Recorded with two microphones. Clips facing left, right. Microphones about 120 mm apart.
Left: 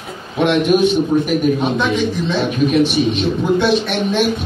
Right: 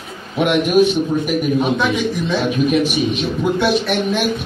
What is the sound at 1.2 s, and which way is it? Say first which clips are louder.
Speech: left 1 dB; 5° right (ahead or behind).